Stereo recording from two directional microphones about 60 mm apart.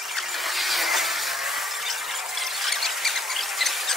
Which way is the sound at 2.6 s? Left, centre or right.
Centre.